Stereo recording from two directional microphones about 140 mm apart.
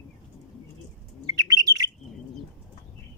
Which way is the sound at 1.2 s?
25° right (ahead or behind).